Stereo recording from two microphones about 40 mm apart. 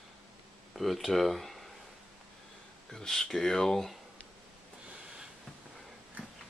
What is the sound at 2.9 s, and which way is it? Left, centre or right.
Speech, centre.